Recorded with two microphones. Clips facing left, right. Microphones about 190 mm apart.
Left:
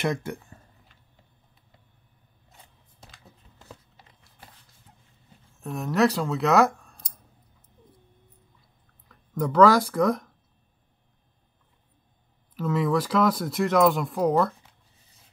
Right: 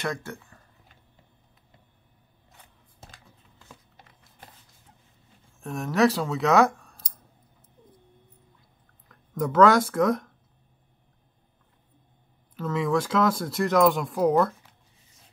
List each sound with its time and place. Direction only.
0.0 s speech: 20° left (ahead or behind)
5.6 s speech: centre (ahead or behind)
9.1 s speech: centre (ahead or behind)
12.5 s speech: 5° left (ahead or behind)